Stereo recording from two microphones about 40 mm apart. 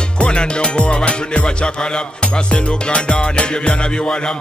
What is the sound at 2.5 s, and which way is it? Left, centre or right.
Music, left.